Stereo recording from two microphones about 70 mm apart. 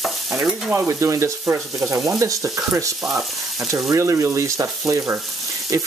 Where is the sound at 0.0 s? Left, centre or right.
Centre.